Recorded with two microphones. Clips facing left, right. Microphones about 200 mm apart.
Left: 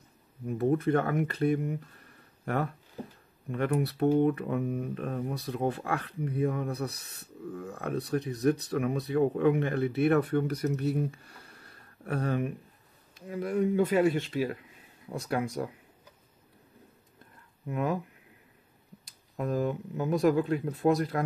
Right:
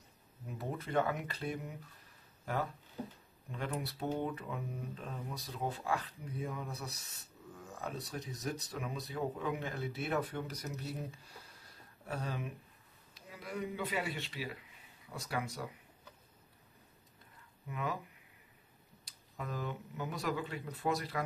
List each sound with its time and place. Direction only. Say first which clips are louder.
0.5 s speech: left 15 dB; 50° left (ahead or behind)
17.6 s speech: left 9 dB; 50° left (ahead or behind)
19.0 s speech: left 11 dB; 50° left (ahead or behind)